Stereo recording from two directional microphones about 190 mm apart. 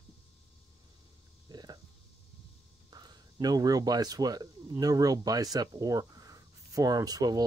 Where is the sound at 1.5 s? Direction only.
20° right (ahead or behind).